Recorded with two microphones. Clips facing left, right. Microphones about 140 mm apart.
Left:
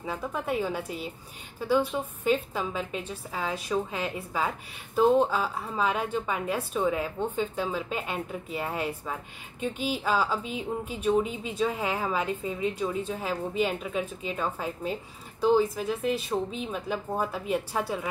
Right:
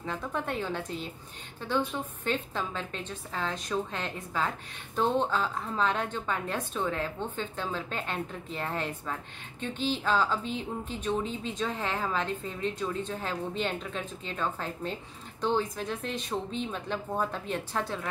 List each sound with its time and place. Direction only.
0.0 s speech: 10° left (ahead or behind)